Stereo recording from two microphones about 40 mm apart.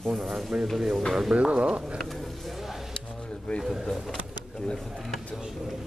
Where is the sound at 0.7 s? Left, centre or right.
Centre.